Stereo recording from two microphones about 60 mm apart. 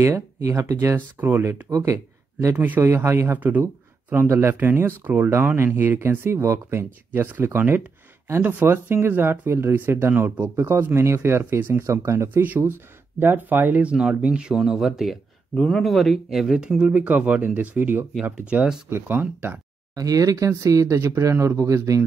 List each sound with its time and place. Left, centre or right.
0.0 s speech: right
0.9 s speech: right
1.4 s speech: right
2.5 s speech: right
2.8 s speech: right
3.3 s speech: right
7.1 s speech: right
12.4 s speech: right
13.8 s speech: centre
15.5 s speech: centre
15.8 s speech: centre; by 18.0 s right
18.3 s speech: centre
18.9 s speech: right
20.0 s speech: right